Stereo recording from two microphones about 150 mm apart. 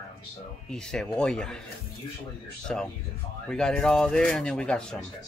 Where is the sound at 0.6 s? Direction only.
5° left (ahead or behind).